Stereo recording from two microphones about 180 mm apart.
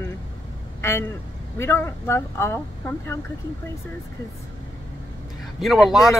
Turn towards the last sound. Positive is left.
turn(degrees=0)  # may be behind; listen again after turning